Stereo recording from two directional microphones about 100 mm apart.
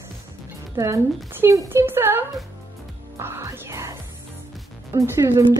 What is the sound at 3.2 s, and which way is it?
Music, 30° right (ahead or behind).